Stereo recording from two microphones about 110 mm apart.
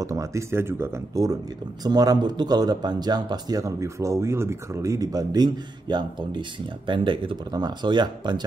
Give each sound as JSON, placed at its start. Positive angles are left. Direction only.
{"t": 0.0, "sound": "speech", "side_deg": -30}